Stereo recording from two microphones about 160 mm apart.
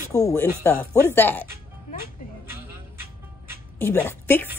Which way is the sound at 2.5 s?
15° right (ahead or behind).